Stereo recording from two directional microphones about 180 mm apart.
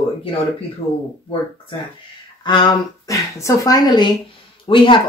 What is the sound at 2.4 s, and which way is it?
Speech, 25° left (ahead or behind).